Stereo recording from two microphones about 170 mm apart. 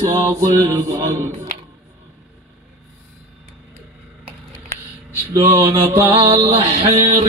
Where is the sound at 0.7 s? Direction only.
15° right (ahead or behind).